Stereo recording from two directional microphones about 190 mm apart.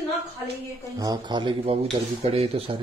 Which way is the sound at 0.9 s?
20° right (ahead or behind).